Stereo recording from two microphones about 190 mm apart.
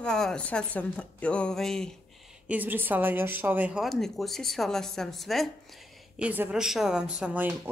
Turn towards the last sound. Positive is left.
turn(degrees=-10)  # may be behind; listen again after turning